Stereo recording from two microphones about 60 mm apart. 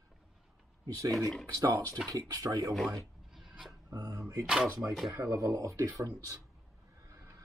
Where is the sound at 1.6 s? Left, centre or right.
Right.